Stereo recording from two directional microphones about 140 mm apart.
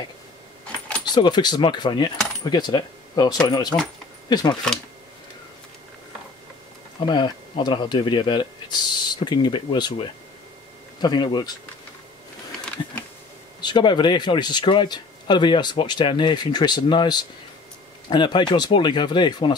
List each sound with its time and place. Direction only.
0.7 s keys jangling: 10° left (ahead or behind)
1.0 s speech: 30° left (ahead or behind)
7.0 s speech: 30° left (ahead or behind)
13.6 s speech: 30° left (ahead or behind)